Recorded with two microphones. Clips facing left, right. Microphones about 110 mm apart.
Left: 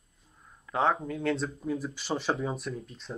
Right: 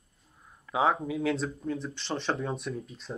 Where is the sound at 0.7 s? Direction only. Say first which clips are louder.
Right 1 dB; 5° right (ahead or behind).